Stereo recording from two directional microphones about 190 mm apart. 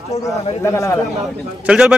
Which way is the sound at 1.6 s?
5° right (ahead or behind).